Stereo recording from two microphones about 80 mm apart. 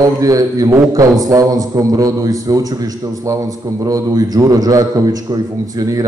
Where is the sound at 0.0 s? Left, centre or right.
Right.